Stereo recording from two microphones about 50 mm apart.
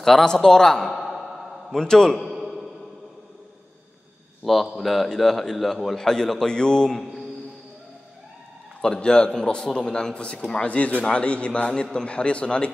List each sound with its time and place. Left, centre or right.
0.0 s a man's voice: centre
0.9 s sigh: centre
1.7 s a man's voice: centre
2.1 s a sound: centre
4.4 s a man's voice: centre
8.8 s a man's voice: centre